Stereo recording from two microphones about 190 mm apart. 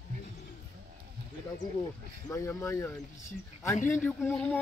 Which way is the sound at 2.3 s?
15° left (ahead or behind).